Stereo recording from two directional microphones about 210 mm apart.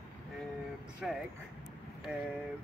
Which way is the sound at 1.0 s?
Centre (ahead or behind).